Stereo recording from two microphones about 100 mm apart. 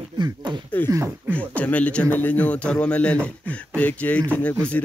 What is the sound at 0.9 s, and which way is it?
Speech, 25° right (ahead or behind).